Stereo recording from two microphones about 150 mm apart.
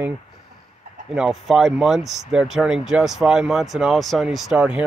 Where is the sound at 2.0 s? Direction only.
50° right (ahead or behind).